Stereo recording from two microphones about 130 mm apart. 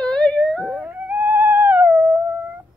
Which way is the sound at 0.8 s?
15° right (ahead or behind).